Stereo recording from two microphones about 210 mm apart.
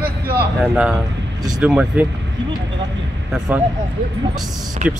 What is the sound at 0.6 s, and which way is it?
A man's voice, 5° right (ahead or behind).